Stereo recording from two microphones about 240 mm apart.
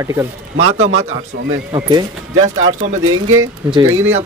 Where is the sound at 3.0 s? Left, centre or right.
Right.